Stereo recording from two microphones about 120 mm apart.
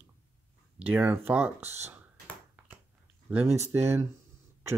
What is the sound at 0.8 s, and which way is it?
Speech, 20° right (ahead or behind).